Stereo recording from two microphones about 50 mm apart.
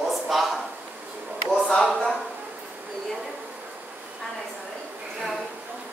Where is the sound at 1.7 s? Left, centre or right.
Centre.